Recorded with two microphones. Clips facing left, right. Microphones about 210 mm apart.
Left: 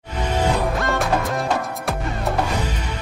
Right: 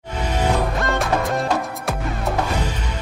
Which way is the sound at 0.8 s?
Centre (ahead or behind).